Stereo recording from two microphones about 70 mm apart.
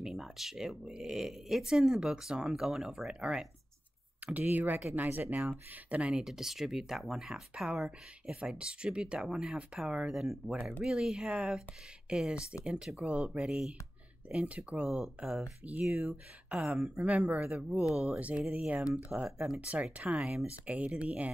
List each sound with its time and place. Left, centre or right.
0.0 s speech: centre
4.3 s speech: right
16.5 s speech: centre
17.0 s speech: centre
19.3 s speech: centre
19.7 s speech: centre
20.6 s speech: centre